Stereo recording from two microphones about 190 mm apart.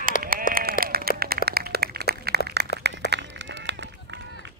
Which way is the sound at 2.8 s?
60° right (ahead or behind).